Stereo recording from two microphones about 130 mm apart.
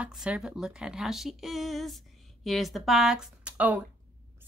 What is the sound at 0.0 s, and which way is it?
A woman's voice, 10° right (ahead or behind).